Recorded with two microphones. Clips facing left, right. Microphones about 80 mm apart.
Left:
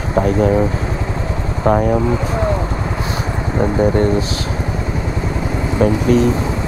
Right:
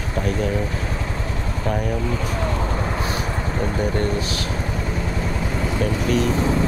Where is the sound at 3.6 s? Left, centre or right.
Left.